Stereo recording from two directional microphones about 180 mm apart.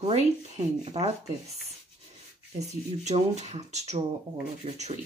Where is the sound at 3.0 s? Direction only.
40° right (ahead or behind).